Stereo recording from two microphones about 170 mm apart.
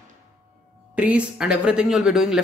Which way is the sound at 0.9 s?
5° right (ahead or behind).